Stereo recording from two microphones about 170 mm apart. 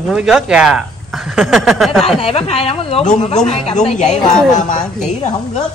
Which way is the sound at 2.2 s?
35° left (ahead or behind).